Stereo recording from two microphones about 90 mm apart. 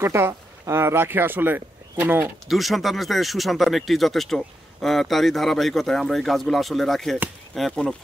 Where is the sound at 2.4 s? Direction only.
Centre (ahead or behind).